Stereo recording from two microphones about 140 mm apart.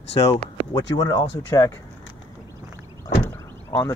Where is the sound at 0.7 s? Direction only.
25° left (ahead or behind).